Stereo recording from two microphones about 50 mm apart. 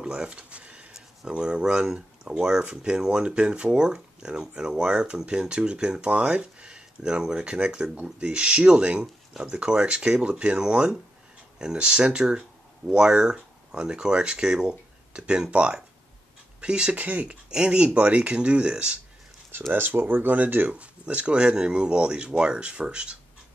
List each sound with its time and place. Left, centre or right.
0.0 s speech: centre
9.0 s speech: centre
9.5 s speech: right
16.9 s speech: right
17.5 s speech: centre
19.7 s speech: right